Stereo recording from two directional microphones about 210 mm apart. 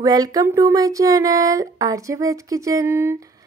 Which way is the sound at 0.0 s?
15° right (ahead or behind).